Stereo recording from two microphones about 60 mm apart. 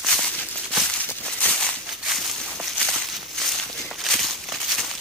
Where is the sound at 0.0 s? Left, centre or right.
Centre.